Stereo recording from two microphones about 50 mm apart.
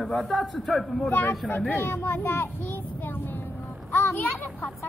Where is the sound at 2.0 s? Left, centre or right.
Left.